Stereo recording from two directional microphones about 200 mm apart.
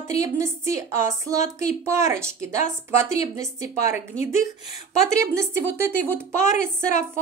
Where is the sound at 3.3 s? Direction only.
15° right (ahead or behind).